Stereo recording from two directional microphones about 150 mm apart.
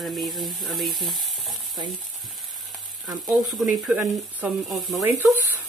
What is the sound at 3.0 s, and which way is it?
Speech, centre (ahead or behind).